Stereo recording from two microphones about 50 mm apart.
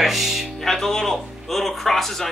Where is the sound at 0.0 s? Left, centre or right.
Centre.